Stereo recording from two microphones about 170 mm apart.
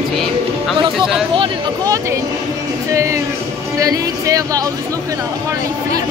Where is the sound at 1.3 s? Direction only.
30° right (ahead or behind).